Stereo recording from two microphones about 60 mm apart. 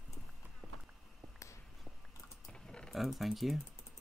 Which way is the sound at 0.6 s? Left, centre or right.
Centre.